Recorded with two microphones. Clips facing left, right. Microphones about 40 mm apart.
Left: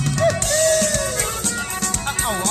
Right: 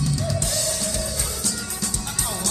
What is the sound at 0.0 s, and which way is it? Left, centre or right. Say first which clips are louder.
Music: left 7 dB; left.